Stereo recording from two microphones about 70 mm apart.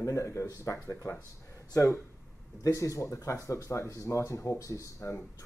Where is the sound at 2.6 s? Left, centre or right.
Left.